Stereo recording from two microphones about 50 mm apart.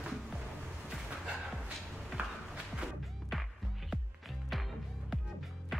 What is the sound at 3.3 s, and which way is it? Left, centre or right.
Music, centre.